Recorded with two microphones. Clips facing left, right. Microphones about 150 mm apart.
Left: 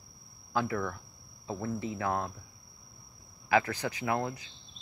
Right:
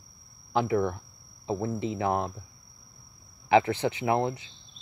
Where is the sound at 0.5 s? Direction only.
20° right (ahead or behind).